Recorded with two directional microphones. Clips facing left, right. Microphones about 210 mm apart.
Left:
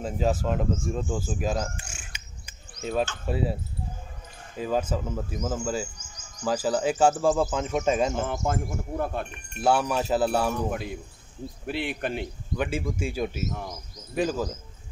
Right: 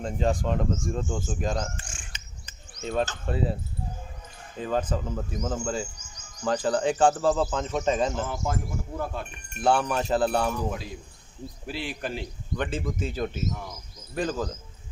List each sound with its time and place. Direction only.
0.0 s speech: 5° left (ahead or behind)
0.8 s cricket: 5° left (ahead or behind)
3.3 s speech: 5° left (ahead or behind)
4.6 s speech: 10° left (ahead or behind)
8.3 s speech: 55° left (ahead or behind)
9.6 s speech: 5° left (ahead or behind)
10.7 s speech: 60° left (ahead or behind)
12.5 s speech: 10° left (ahead or behind)